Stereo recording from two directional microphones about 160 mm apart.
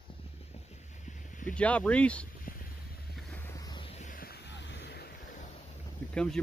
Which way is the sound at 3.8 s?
45° left (ahead or behind).